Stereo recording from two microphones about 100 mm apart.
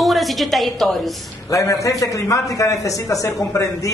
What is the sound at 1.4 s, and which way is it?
Speech, 35° left (ahead or behind).